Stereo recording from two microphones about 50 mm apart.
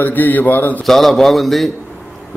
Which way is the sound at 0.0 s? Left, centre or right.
Left.